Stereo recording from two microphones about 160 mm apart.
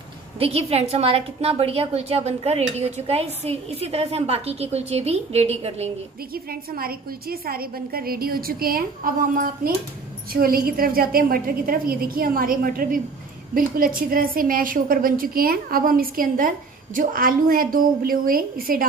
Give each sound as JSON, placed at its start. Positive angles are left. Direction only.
{"t": 0.4, "sound": "a woman's voice", "side_deg": -40}
{"t": 6.3, "sound": "a woman's voice", "side_deg": -70}